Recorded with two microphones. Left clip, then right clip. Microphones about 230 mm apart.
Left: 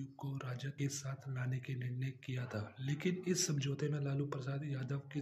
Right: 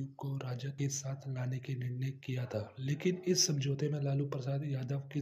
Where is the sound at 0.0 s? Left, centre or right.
Centre.